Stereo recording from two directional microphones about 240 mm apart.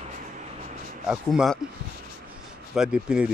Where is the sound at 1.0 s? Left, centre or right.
Centre.